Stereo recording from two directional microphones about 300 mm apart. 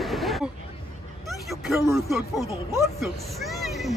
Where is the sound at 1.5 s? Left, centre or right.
Centre.